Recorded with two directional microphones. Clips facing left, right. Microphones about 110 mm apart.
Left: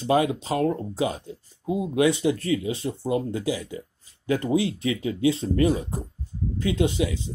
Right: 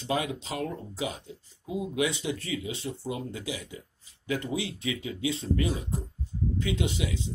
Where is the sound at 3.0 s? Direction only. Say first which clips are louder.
Left 9 dB; 55° left (ahead or behind).